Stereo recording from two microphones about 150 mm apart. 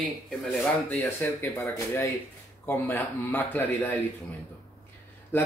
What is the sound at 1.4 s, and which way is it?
Speech, 20° left (ahead or behind).